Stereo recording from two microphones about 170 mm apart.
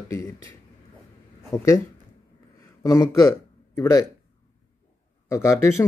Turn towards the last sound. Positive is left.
turn(degrees=15)  # may be behind; listen again after turning